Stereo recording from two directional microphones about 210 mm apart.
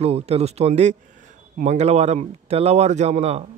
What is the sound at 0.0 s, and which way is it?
Speech, 30° right (ahead or behind).